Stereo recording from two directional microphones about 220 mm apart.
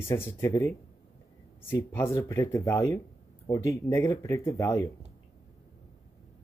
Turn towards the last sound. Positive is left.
turn(degrees=15)  # may be behind; listen again after turning